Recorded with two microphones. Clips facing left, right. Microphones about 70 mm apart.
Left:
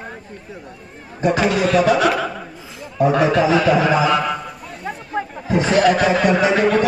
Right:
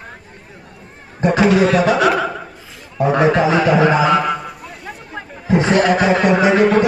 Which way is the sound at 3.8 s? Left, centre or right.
Right.